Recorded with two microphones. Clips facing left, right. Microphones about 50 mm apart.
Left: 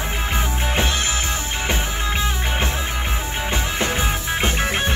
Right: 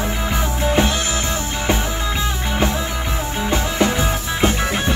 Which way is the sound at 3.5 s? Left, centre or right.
Left.